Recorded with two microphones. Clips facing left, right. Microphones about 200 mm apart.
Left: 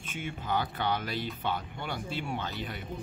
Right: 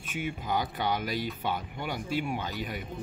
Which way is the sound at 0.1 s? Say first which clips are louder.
Right 2 dB; 10° right (ahead or behind).